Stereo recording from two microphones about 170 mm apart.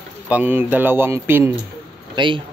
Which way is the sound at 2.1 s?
30° right (ahead or behind).